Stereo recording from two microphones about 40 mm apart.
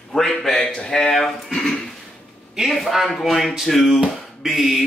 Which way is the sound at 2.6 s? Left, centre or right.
Centre.